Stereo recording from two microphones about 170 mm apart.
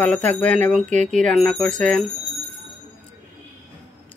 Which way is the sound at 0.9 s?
45° right (ahead or behind).